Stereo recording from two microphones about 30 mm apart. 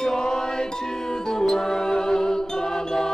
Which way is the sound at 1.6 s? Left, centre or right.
Centre.